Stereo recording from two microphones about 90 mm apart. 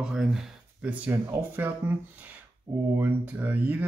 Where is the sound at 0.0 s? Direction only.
5° right (ahead or behind); by 1.7 s 25° right (ahead or behind).